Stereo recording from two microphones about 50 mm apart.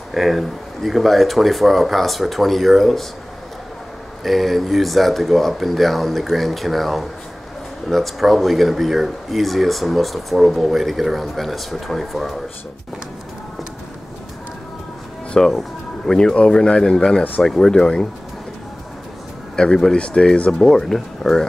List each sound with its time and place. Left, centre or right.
0.1 s speech: centre
4.2 s speech: centre
15.3 s speech: centre
19.5 s speech: centre